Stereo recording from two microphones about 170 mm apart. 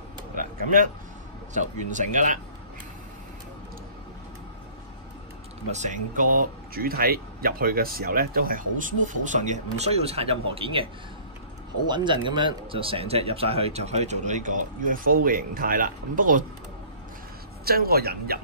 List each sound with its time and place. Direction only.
0.4 s a sound: 50° right (ahead or behind)
1.5 s speech: 45° right (ahead or behind)
5.7 s speech: 45° right (ahead or behind)
11.9 s speech: 25° right (ahead or behind); by 16.4 s 50° right (ahead or behind)
17.6 s speech: 60° right (ahead or behind)